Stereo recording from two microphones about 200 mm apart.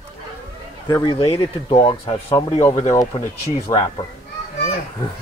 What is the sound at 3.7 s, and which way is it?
Speech, 20° left (ahead or behind).